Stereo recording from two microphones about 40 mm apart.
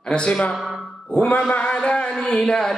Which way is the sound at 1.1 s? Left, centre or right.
Left.